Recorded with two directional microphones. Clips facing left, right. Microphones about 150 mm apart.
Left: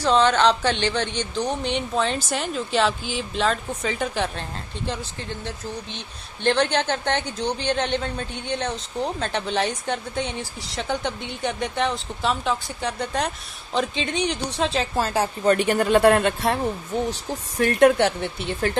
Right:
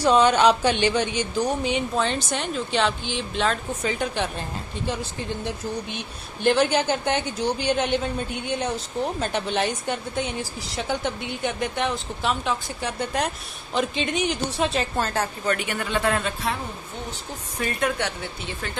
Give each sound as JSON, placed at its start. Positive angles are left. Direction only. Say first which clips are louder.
{"t": 0.0, "sound": "speech", "louder": "right 1 dB", "side_deg": -15}
{"t": 15.4, "sound": "speech", "louder": "left 7 dB", "side_deg": 35}
{"t": 17.6, "sound": "a woman's voice", "louder": "left 8 dB", "side_deg": 75}